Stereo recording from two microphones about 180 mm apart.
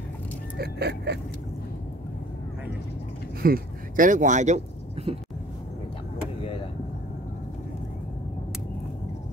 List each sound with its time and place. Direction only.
0.6 s gasp: 65° right (ahead or behind)
3.4 s speech: 50° right (ahead or behind); by 5.1 s 35° right (ahead or behind)